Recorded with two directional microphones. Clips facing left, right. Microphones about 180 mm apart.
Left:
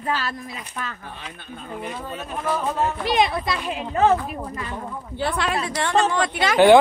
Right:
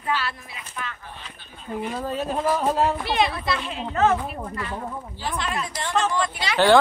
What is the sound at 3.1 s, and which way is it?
Speech, 15° left (ahead or behind).